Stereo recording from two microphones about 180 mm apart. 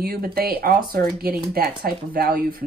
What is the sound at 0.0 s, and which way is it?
Speech, 55° right (ahead or behind).